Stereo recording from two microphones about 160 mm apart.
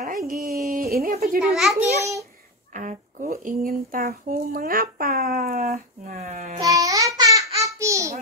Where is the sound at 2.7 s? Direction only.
55° right (ahead or behind).